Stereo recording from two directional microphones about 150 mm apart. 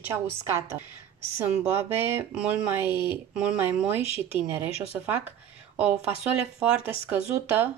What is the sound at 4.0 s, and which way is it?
Speech, 40° left (ahead or behind).